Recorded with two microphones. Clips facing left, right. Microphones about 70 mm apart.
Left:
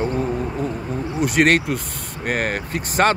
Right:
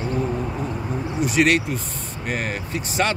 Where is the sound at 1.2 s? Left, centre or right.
Left.